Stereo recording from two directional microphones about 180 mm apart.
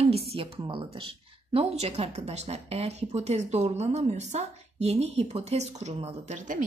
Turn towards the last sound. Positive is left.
turn(degrees=-45)  # may be behind; listen again after turning